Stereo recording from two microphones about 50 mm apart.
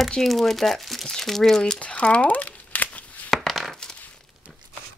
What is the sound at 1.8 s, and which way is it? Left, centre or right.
Crumpling, left.